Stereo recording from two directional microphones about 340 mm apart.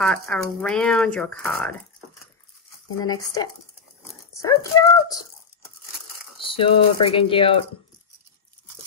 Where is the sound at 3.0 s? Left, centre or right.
Centre.